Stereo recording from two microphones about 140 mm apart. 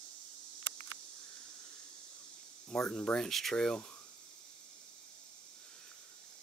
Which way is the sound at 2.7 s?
5° left (ahead or behind).